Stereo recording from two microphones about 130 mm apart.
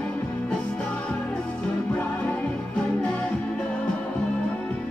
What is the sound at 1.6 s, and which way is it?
Music, 5° left (ahead or behind).